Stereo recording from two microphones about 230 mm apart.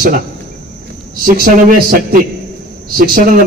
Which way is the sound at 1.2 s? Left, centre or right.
Right.